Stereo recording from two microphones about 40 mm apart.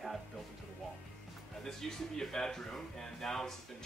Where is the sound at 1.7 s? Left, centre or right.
Centre.